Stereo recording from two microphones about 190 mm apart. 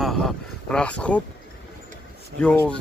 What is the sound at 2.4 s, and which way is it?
Speech, 5° left (ahead or behind).